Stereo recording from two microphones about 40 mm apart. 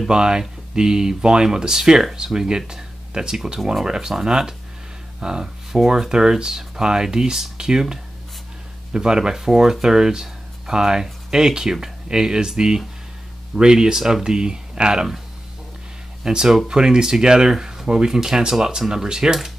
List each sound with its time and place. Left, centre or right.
0.1 s speech: centre
16.3 s speech: centre